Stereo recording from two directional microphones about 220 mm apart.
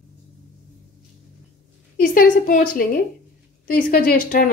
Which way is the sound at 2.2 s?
40° left (ahead or behind).